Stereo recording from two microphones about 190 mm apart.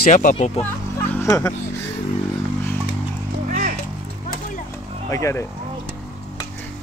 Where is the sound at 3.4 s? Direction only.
45° right (ahead or behind).